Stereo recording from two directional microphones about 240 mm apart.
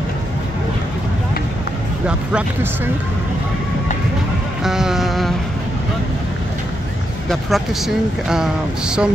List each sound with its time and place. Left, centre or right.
2.0 s speech: centre
4.6 s music: centre
7.2 s speech: centre